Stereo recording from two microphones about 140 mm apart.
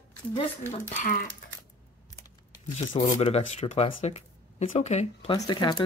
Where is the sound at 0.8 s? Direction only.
70° left (ahead or behind).